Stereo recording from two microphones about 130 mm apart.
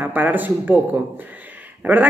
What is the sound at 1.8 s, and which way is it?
Speech, 10° right (ahead or behind).